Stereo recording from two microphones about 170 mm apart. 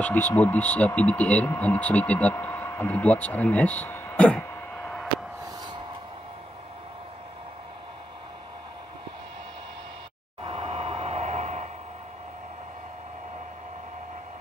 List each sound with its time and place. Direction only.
0.0 s speech: 10° left (ahead or behind)
10.4 s vehicle: 35° right (ahead or behind)